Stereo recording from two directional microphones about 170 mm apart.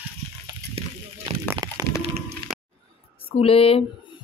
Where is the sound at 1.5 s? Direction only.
20° right (ahead or behind).